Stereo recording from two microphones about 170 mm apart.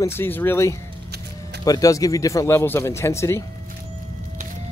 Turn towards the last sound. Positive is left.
turn(degrees=15)  # may be behind; listen again after turning